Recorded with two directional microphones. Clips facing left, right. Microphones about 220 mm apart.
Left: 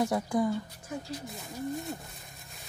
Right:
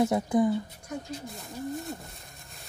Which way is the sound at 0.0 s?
20° right (ahead or behind).